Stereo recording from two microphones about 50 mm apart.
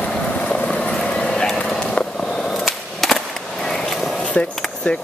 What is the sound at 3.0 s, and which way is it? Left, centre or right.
Skateboard, centre.